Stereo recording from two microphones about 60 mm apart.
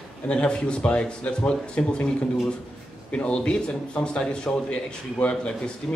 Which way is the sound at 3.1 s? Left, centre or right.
Centre.